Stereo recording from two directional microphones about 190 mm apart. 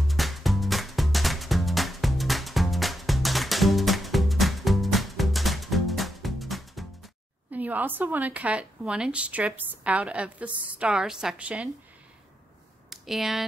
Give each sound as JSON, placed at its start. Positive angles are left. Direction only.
{"t": 0.1, "sound": "music", "side_deg": 0}
{"t": 7.5, "sound": "a woman's voice", "side_deg": -10}
{"t": 12.9, "sound": "a sound", "side_deg": 0}